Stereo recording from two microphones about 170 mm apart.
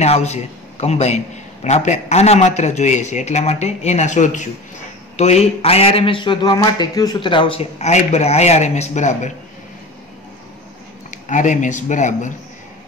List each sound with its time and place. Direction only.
0.0 s a man's voice: 40° left (ahead or behind)
11.1 s speech: 50° left (ahead or behind)